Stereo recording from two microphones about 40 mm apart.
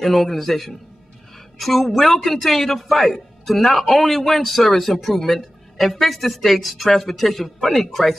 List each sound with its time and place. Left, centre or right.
0.0 s speech: centre